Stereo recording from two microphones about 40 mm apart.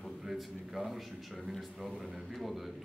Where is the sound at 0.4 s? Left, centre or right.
Centre.